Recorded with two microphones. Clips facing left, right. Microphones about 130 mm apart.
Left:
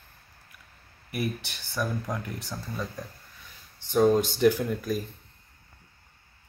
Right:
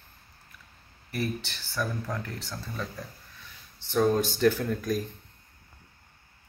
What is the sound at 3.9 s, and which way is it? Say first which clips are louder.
Speech: left 3 dB; 15° left (ahead or behind).